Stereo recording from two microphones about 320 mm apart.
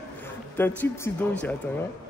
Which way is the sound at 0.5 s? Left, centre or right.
Centre.